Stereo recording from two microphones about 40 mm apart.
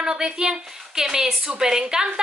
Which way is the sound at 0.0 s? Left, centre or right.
Centre.